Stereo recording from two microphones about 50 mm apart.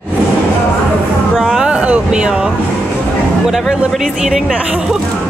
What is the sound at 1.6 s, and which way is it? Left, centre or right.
Speech, right.